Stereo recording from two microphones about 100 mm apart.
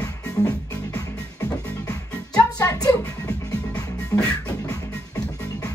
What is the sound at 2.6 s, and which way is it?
Music, 40° left (ahead or behind).